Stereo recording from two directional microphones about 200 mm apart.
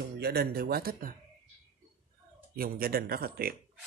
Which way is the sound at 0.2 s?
50° right (ahead or behind).